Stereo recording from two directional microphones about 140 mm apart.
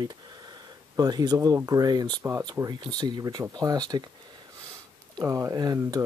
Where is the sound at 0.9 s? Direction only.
30° right (ahead or behind).